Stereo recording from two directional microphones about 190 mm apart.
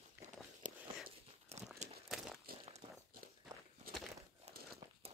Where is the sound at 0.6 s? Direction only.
40° right (ahead or behind).